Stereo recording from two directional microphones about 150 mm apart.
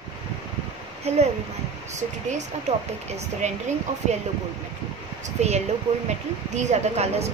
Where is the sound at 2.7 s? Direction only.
45° right (ahead or behind).